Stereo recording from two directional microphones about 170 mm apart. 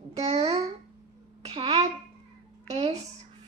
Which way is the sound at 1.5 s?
35° right (ahead or behind).